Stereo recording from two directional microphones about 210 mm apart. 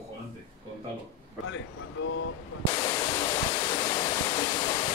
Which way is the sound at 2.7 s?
20° left (ahead or behind).